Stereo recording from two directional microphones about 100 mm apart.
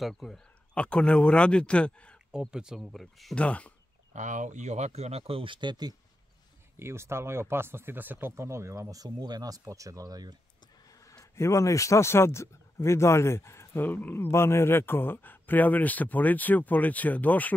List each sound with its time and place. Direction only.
0.0 s speech: centre (ahead or behind)
2.5 s speech: 5° right (ahead or behind)
3.3 s speech: 15° left (ahead or behind)
4.9 s speech: 90° right; by 5.9 s 45° right (ahead or behind)
6.8 s speech: 25° right (ahead or behind)
10.9 s speech: 35° left (ahead or behind); by 17.6 s 15° left (ahead or behind)